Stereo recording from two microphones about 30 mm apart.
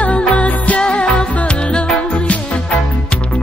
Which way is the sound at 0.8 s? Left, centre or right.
Left.